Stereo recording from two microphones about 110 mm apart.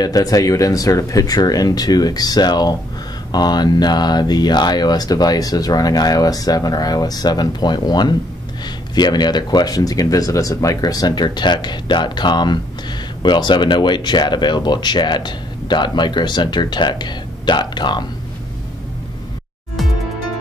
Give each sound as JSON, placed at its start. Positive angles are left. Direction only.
{"t": 0.0, "sound": "speech", "side_deg": 35}